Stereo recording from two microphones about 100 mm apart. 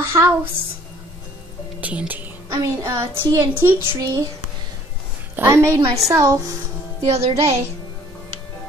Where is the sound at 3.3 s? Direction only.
25° right (ahead or behind).